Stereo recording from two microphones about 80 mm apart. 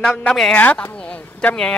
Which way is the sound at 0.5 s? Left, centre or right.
Left.